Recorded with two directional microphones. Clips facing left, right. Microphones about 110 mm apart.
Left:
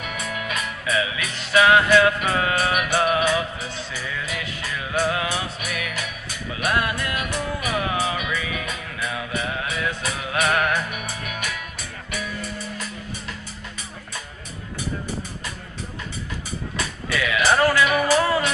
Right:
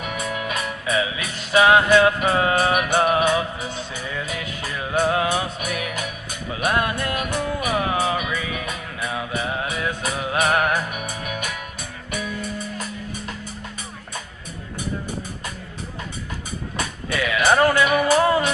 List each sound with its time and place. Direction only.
0.0 s music: 30° right (ahead or behind)
3.6 s music: 20° right (ahead or behind)
10.9 s music: 40° right (ahead or behind)
17.5 s music: 20° right (ahead or behind)